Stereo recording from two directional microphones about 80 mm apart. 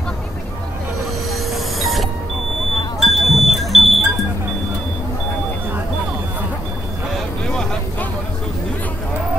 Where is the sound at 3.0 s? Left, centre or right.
Centre.